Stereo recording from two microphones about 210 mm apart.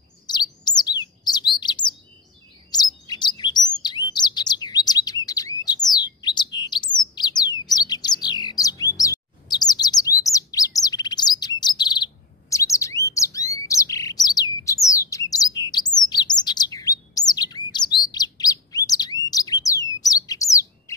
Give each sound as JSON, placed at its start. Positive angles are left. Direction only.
{"t": 0.3, "sound": "chirp", "side_deg": 20}
{"t": 1.6, "sound": "bird", "side_deg": 20}
{"t": 2.7, "sound": "chirp", "side_deg": 20}
{"t": 5.7, "sound": "bird", "side_deg": 20}
{"t": 11.6, "sound": "chirp", "side_deg": 20}
{"t": 13.2, "sound": "bird", "side_deg": 15}